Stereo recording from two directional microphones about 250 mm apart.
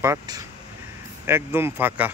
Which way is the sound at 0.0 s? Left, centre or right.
Centre.